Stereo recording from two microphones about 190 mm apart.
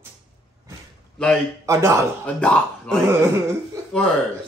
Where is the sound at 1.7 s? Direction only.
15° right (ahead or behind).